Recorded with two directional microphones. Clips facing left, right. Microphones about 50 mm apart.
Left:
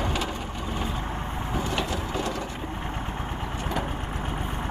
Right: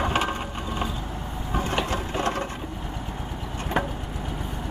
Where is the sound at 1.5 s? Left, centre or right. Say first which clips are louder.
Right 3 dB; right.